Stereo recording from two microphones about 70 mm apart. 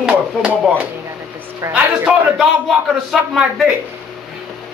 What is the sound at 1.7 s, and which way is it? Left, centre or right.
Speech, right.